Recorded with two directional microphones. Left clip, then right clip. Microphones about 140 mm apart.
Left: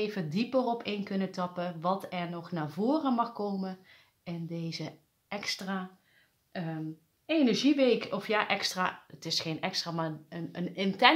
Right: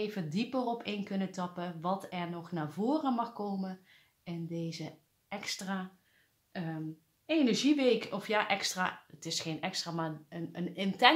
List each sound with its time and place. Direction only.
0.0 s speech: 25° left (ahead or behind)